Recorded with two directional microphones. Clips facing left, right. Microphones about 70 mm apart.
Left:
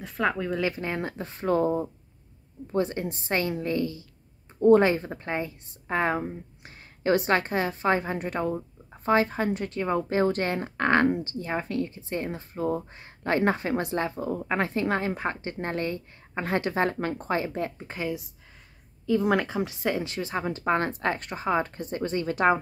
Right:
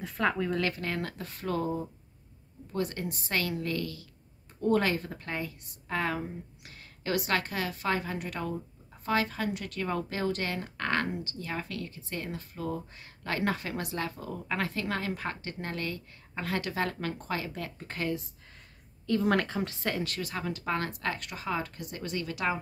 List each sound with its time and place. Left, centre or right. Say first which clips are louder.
0.0 s speech: left 2 dB; centre
0.7 s speech: left 3 dB; left
9.8 s speech: left 8 dB; left
17.7 s speech: left 2 dB; centre; by 22.6 s left